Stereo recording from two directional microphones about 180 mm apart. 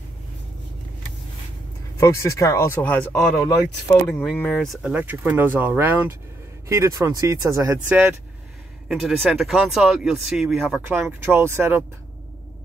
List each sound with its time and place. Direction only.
2.0 s speech: 15° left (ahead or behind); by 11.8 s 15° right (ahead or behind)